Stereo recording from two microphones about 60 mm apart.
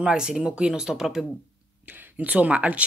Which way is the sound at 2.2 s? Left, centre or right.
Right.